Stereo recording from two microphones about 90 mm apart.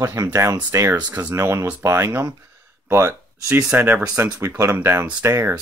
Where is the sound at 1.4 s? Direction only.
35° right (ahead or behind).